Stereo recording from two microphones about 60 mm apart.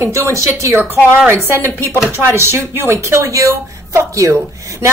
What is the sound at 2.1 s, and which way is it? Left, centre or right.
Speech, right.